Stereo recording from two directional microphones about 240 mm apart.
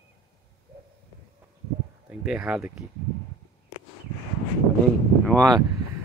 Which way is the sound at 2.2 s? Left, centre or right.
Centre.